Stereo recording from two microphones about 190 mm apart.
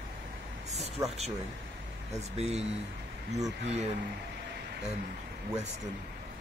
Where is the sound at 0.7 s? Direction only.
35° right (ahead or behind).